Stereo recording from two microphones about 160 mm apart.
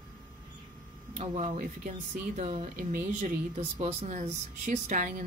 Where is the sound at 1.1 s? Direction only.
45° right (ahead or behind).